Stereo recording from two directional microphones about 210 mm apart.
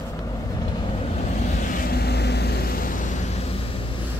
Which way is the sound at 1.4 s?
35° left (ahead or behind).